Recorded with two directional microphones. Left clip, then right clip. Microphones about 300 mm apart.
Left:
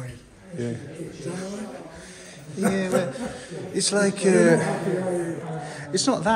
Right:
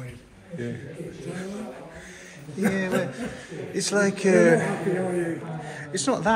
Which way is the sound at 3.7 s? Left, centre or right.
Centre.